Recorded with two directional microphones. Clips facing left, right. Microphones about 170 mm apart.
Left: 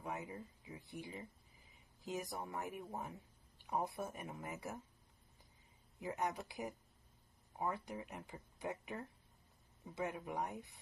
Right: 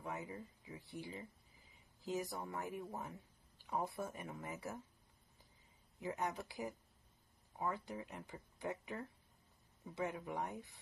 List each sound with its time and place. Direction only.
0.0 s speech: 20° left (ahead or behind)
5.9 s speech: 20° left (ahead or behind)